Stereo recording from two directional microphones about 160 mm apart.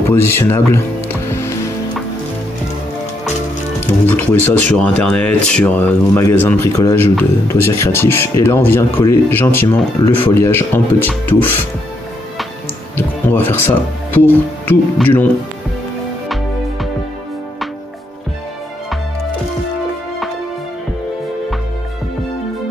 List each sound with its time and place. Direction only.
0.1 s speech: 15° left (ahead or behind)
1.3 s music: 15° left (ahead or behind)
4.0 s speech: 10° left (ahead or behind)
12.9 s music: 15° left (ahead or behind)
14.7 s speech: 10° left (ahead or behind)